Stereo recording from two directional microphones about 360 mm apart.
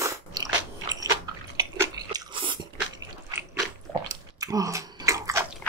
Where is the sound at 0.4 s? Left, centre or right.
Centre.